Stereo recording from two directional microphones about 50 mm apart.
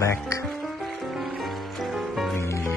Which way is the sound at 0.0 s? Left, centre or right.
Left.